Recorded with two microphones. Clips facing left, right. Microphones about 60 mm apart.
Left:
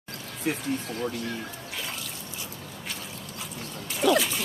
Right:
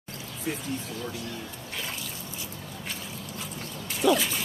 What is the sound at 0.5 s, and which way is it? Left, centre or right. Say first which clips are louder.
Speech: left 4 dB; left.